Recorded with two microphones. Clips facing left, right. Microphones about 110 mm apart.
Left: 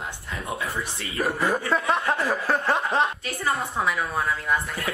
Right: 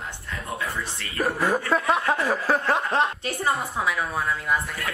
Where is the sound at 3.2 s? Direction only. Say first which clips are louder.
Right 2 dB; 25° right (ahead or behind).